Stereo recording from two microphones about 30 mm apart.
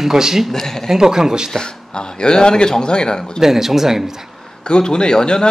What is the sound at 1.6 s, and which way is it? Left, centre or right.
Speech, left.